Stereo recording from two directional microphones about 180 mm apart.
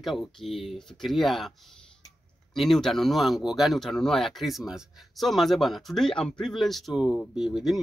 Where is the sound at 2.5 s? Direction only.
Centre (ahead or behind).